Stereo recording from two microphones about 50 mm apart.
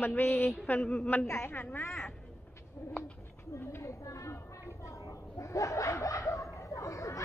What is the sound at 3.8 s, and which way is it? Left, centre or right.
Chatter, left.